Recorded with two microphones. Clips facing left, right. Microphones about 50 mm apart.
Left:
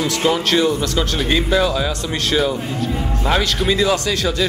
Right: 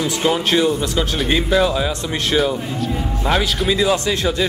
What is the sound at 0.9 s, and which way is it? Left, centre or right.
Speech, centre.